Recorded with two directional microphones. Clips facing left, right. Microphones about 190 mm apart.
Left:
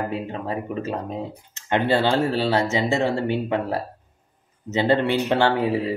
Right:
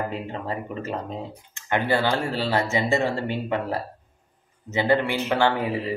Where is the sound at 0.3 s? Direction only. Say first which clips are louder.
Left 2 dB; 15° left (ahead or behind).